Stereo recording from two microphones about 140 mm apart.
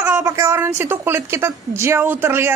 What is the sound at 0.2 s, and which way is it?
A woman's voice, 25° right (ahead or behind).